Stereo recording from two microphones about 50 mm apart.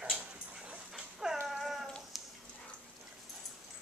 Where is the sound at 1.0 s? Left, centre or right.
Centre.